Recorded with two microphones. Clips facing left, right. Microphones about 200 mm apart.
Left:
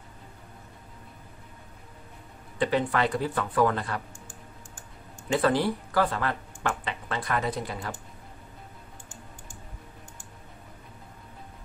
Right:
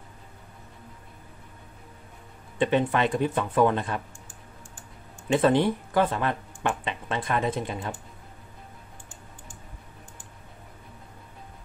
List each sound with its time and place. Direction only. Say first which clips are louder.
2.6 s speech: right 2 dB; 20° right (ahead or behind)
5.3 s speech: right 3 dB; 20° right (ahead or behind)